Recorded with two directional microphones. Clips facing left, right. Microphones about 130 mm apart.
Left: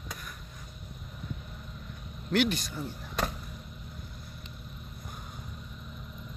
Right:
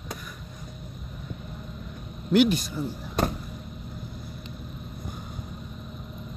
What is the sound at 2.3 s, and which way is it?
Speech, 10° right (ahead or behind).